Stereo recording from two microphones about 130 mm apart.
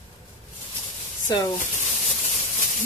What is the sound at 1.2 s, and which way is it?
Speech, 30° left (ahead or behind).